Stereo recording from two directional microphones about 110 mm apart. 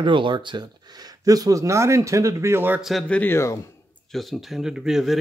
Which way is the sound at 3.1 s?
15° left (ahead or behind).